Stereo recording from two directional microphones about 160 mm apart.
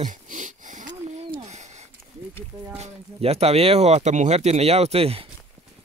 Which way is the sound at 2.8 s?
40° right (ahead or behind).